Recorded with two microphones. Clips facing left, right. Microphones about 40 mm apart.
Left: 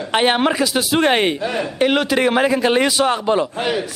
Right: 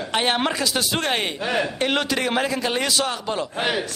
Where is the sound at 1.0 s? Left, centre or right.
Left.